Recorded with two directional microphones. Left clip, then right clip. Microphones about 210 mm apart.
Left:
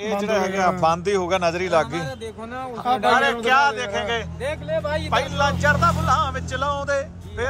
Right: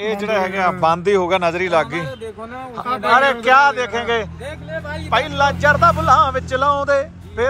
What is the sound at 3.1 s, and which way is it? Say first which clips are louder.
A man's voice: right 8 dB; 5° left (ahead or behind).